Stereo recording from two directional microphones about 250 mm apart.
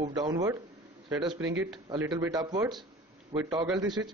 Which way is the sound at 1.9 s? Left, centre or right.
Centre.